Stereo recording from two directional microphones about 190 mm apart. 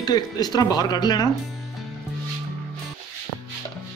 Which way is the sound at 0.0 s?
20° left (ahead or behind).